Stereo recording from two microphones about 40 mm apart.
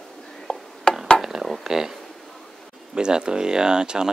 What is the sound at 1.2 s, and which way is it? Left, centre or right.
Dishes, centre.